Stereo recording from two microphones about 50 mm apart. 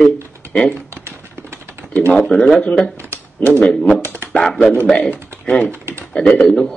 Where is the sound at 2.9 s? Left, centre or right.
Right.